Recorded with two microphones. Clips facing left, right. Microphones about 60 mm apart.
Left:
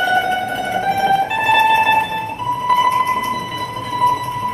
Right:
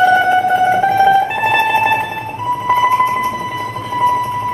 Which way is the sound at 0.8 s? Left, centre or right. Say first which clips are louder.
Right 5 dB; right.